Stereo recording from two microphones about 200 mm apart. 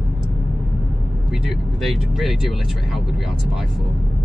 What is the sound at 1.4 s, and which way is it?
Speech, centre (ahead or behind).